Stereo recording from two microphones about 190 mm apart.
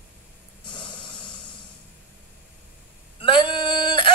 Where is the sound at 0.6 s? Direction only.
25° left (ahead or behind).